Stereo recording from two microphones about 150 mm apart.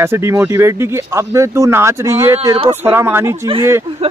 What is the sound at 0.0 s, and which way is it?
Speech, 15° right (ahead or behind).